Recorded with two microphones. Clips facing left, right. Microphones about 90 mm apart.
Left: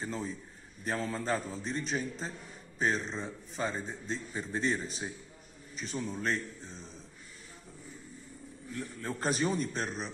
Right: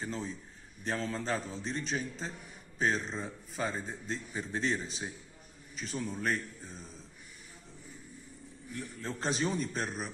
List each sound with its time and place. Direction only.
0.0 s a man's voice: 5° left (ahead or behind)
8.7 s a man's voice: 20° left (ahead or behind)
9.2 s a man's voice: centre (ahead or behind)